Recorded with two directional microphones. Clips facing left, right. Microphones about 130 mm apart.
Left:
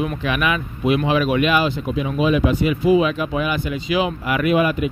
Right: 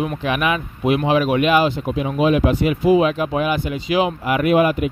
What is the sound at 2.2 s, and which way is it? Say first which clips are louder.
Speech: right 1 dB; 55° right (ahead or behind).